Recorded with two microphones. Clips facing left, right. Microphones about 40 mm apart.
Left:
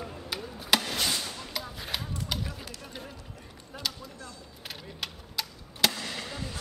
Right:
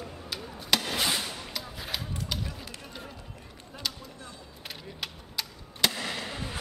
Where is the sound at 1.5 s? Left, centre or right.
Centre.